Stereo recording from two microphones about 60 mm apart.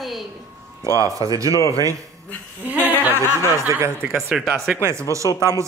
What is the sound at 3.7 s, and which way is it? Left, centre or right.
Speech, right.